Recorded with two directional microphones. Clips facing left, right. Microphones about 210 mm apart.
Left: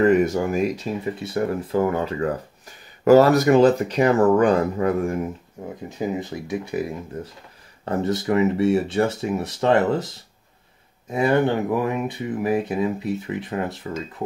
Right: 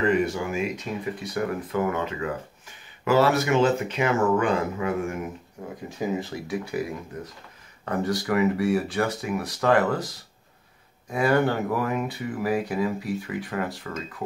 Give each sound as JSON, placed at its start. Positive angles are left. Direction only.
{"t": 0.0, "sound": "speech", "side_deg": 45}
{"t": 5.9, "sound": "speech", "side_deg": 20}